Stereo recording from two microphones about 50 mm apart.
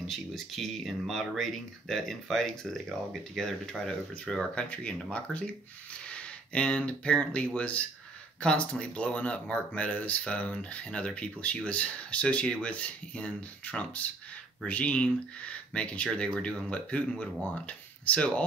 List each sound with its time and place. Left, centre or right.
0.0 s speech: centre
5.1 s speech: left